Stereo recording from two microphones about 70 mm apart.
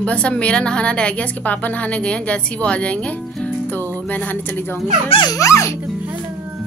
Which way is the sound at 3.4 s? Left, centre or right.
Left.